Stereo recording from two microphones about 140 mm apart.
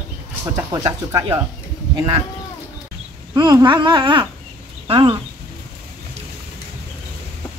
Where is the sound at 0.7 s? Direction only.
25° right (ahead or behind).